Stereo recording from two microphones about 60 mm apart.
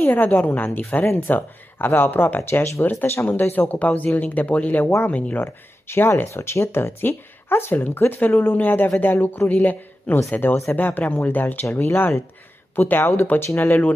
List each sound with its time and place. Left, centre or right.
0.0 s speech: left
2.8 s speech: left
5.4 s speech: left